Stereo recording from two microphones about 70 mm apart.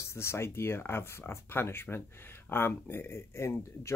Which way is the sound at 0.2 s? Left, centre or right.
Left.